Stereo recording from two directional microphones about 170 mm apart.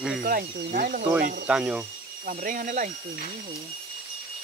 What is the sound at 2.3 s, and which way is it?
Speech, 50° right (ahead or behind).